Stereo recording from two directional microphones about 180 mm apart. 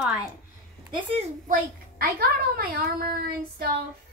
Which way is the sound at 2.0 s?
60° right (ahead or behind).